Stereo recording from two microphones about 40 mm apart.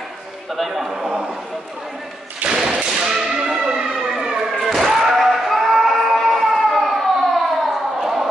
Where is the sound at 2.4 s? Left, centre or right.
Right.